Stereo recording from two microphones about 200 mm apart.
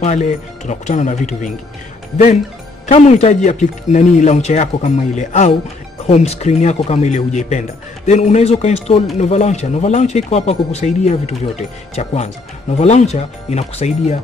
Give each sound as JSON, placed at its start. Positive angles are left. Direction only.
{"t": 0.0, "sound": "speech", "side_deg": 35}
{"t": 2.9, "sound": "speech", "side_deg": 35}